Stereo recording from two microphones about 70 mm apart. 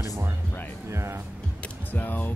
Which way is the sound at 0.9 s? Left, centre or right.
Right.